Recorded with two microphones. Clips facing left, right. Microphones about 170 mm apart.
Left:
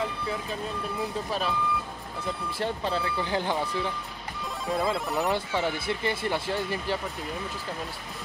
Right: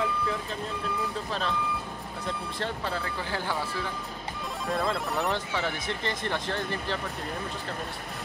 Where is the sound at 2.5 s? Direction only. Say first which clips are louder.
Left 5 dB; 15° left (ahead or behind).